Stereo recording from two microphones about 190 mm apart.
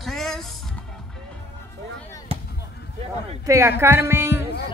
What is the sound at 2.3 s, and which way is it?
Basketball bounce, 30° right (ahead or behind).